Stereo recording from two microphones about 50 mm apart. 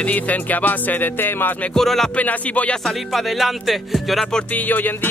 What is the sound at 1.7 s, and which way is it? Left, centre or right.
Speech, centre.